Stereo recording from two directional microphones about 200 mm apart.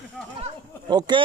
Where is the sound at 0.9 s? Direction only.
20° right (ahead or behind).